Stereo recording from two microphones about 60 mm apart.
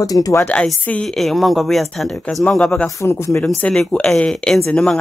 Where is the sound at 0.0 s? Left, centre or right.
Left.